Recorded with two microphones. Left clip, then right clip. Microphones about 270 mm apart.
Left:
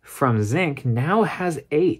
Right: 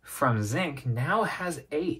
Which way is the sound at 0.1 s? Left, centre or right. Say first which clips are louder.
Left 5 dB; left.